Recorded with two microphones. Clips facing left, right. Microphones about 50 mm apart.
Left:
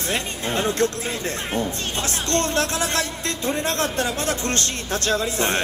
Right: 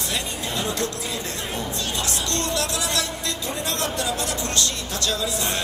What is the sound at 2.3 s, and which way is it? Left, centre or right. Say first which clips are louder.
A man's voice: left 6 dB; left.